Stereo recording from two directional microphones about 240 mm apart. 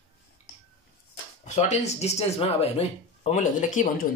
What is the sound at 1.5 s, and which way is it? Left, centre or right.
Speech, left.